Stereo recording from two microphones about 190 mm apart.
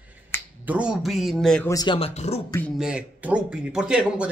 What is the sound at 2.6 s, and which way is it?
Speech, 5° right (ahead or behind).